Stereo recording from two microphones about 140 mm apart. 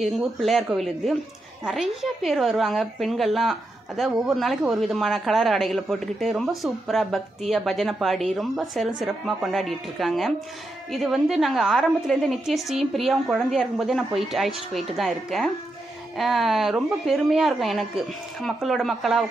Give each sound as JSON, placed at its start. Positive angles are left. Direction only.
{"t": 0.0, "sound": "a woman's voice", "side_deg": 0}